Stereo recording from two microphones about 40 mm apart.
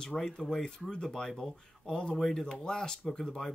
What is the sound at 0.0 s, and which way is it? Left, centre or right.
Speech, centre.